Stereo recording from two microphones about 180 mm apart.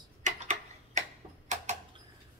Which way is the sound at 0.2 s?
40° right (ahead or behind).